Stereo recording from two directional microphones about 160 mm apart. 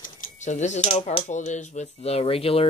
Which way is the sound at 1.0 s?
45° left (ahead or behind).